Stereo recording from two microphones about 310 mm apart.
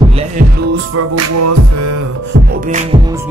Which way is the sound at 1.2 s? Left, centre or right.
Right.